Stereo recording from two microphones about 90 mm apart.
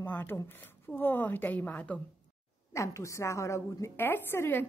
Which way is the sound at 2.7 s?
35° left (ahead or behind).